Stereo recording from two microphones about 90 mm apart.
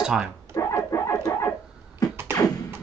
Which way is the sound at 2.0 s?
45° left (ahead or behind).